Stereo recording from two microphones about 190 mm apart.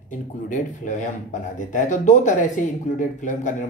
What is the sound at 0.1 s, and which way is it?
Speech, 45° left (ahead or behind).